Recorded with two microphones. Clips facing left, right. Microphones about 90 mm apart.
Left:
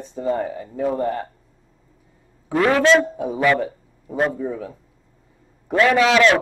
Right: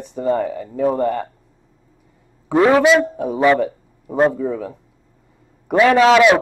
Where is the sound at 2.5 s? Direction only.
20° right (ahead or behind).